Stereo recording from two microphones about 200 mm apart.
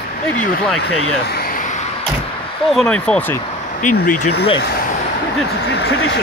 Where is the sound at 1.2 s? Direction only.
50° left (ahead or behind).